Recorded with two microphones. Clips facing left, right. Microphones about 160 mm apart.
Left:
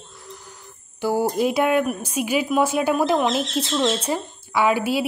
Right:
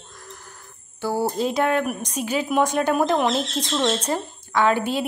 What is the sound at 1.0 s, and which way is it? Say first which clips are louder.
A woman's voice: left 3 dB; 15° left (ahead or behind).